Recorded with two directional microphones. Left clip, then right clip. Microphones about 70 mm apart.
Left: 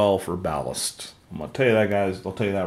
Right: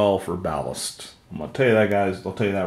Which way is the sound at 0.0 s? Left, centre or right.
Left.